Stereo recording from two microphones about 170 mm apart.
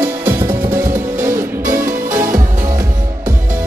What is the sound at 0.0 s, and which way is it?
Music, 15° right (ahead or behind).